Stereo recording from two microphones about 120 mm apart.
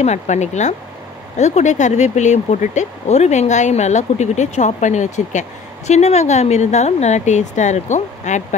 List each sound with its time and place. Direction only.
0.0 s speech: 75° left (ahead or behind)